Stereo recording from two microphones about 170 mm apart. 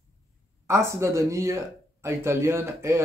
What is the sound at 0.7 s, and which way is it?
Speech, 15° right (ahead or behind).